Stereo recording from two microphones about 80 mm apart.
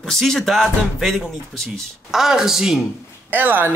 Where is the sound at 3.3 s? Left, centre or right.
Right.